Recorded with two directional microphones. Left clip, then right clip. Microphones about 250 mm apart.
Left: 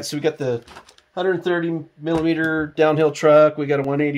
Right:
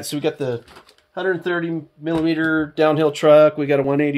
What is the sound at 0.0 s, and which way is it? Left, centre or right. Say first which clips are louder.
Speech: even; right.